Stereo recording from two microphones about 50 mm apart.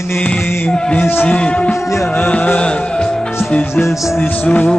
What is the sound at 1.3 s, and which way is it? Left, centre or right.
Music, left.